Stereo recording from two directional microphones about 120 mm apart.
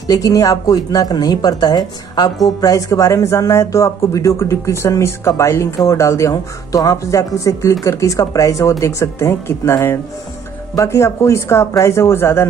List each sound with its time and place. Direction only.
0.0 s speech: 30° left (ahead or behind)